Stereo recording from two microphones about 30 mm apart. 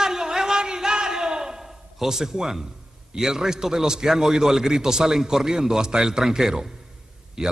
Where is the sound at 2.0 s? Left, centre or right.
Centre.